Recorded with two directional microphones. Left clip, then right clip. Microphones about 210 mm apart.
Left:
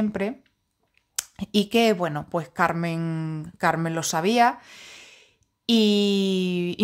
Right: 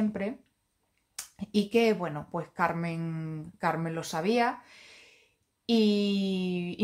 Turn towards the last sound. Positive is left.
turn(degrees=50)  # may be behind; listen again after turning